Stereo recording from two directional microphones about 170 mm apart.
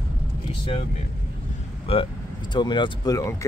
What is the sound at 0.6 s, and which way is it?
Speech, 35° left (ahead or behind).